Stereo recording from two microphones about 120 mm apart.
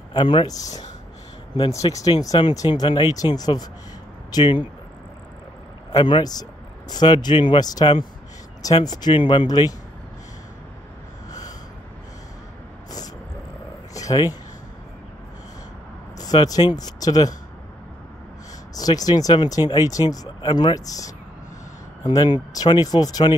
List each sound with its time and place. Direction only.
0.1 s speech: 40° left (ahead or behind)
1.7 s speech: 30° left (ahead or behind)
5.9 s speech: 40° left (ahead or behind)
13.9 s a sound: 30° left (ahead or behind)
16.2 s speech: 30° left (ahead or behind)
18.8 s speech: 30° left (ahead or behind)